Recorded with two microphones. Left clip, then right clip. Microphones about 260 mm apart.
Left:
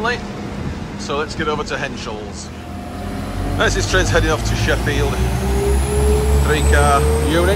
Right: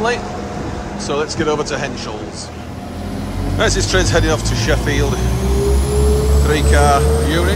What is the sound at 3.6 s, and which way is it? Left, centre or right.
Speech, centre.